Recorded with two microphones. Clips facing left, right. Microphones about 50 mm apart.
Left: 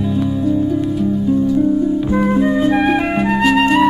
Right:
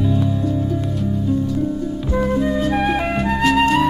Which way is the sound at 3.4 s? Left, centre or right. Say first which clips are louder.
Left 2 dB; centre.